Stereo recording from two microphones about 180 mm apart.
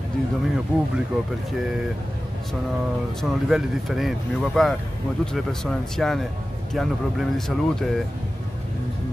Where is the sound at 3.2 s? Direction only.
Centre (ahead or behind).